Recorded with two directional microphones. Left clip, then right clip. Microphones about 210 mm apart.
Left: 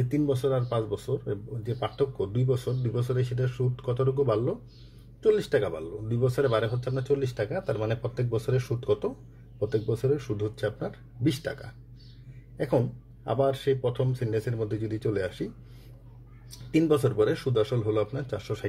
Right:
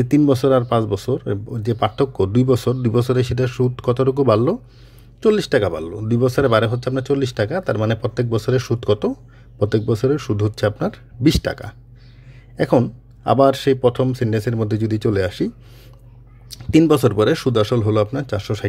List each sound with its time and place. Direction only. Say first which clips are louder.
0.0 s speech: right 11 dB; 45° right (ahead or behind)
16.7 s speech: right 9 dB; 45° right (ahead or behind)